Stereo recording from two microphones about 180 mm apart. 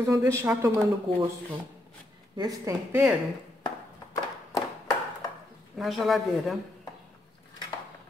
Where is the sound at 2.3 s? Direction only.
20° right (ahead or behind).